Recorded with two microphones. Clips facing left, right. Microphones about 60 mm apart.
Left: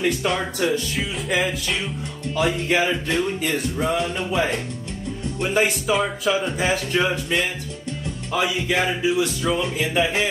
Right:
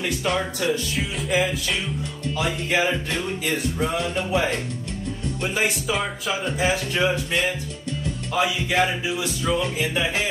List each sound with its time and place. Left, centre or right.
0.2 s speech: left
2.3 s music: left
3.4 s speech: left
5.9 s speech: centre
6.6 s speech: left
8.4 s speech: left
9.8 s speech: left